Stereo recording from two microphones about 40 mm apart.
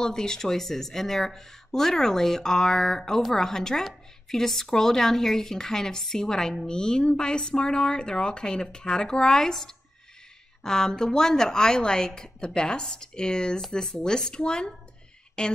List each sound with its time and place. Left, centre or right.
0.0 s speech: centre